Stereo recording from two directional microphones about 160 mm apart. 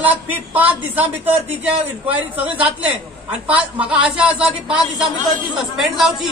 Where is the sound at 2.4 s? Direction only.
35° right (ahead or behind).